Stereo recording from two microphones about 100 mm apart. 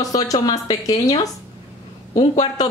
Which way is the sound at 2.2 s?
45° left (ahead or behind).